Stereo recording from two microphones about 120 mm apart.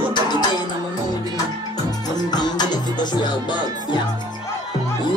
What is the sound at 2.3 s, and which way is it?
Music, 35° left (ahead or behind).